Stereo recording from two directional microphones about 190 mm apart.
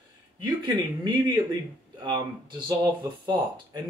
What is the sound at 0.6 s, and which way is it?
Speech, 25° right (ahead or behind).